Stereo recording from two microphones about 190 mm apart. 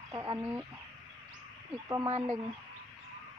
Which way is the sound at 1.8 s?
15° right (ahead or behind).